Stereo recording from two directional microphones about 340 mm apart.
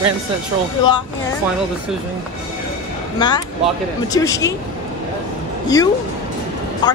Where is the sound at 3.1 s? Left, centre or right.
Centre.